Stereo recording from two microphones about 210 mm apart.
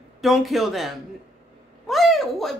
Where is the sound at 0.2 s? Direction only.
Centre (ahead or behind).